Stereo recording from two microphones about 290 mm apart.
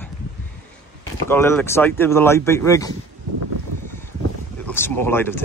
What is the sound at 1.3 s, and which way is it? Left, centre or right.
Speech, centre.